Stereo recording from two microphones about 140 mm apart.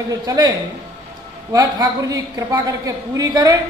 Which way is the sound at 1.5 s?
25° right (ahead or behind).